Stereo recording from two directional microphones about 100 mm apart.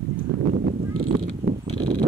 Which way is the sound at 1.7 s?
45° right (ahead or behind).